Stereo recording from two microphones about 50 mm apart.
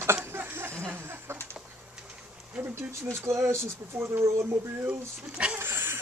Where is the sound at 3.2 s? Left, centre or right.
Right.